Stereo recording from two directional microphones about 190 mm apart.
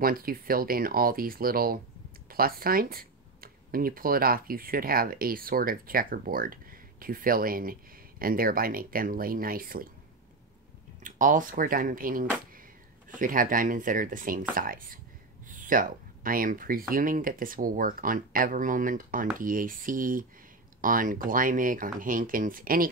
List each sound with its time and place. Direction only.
0.0 s speech: 50° right (ahead or behind)
11.1 s speech: 45° right (ahead or behind)